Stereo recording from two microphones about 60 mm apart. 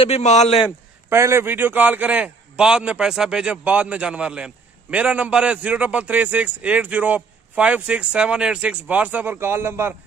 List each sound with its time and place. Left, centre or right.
1.1 s a man's voice: right; by 8.7 s centre
8.8 s a man's voice: right